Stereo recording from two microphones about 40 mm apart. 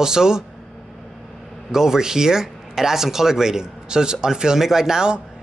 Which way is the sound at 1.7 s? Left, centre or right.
Centre.